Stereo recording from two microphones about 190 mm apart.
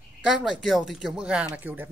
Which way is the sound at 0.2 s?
Centre (ahead or behind).